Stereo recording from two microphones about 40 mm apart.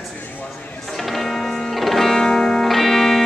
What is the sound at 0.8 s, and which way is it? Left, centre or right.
Music, centre.